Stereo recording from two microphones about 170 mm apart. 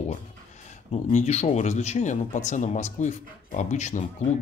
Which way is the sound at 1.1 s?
40° left (ahead or behind).